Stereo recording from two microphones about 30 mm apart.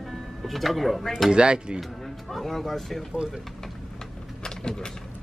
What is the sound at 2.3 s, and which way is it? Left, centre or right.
Speech, centre.